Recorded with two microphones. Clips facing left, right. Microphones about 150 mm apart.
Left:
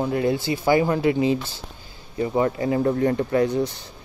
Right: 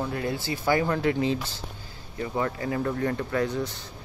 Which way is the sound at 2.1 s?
20° left (ahead or behind).